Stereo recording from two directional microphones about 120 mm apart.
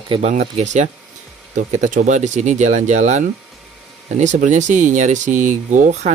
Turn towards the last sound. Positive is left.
turn(degrees=-90)